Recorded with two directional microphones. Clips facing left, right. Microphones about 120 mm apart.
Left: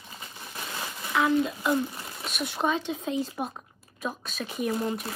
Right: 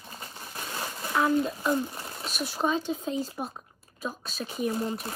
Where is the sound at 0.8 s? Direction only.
35° right (ahead or behind).